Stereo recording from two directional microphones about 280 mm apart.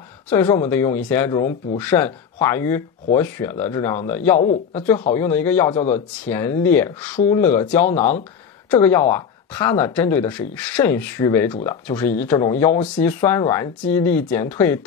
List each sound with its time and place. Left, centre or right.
0.3 s speech: centre
4.4 s speech: left
5.1 s speech: centre